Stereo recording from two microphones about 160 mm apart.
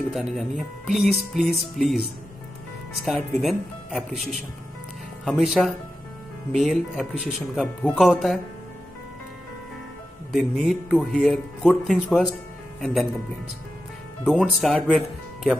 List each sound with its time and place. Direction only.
0.1 s speech: centre (ahead or behind)
3.1 s speech: centre (ahead or behind)
10.3 s speech: centre (ahead or behind)
14.2 s speech: 5° left (ahead or behind)